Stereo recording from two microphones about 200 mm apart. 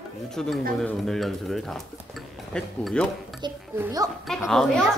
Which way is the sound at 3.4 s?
20° right (ahead or behind).